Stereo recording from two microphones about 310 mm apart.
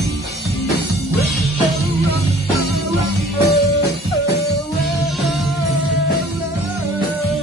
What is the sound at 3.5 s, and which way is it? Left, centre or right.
Music, left.